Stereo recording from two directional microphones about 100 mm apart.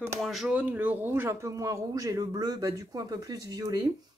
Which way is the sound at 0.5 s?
15° right (ahead or behind).